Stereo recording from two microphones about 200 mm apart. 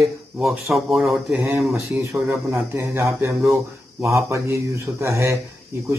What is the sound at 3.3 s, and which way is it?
Speech, centre (ahead or behind).